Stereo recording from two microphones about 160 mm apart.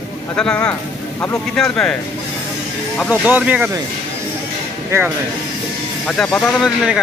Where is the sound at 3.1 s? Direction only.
10° right (ahead or behind).